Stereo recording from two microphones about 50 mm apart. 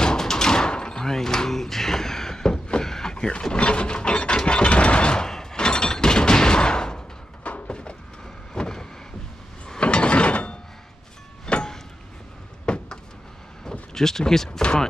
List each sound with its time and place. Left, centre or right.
0.0 s door: centre
7.4 s a sound: left
8.5 s vehicle: centre
9.7 s pulleys: left
11.4 s music: centre
12.6 s a sound: centre
13.9 s speech: centre